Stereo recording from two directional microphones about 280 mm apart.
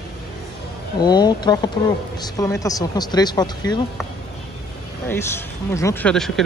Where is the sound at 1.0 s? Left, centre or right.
Centre.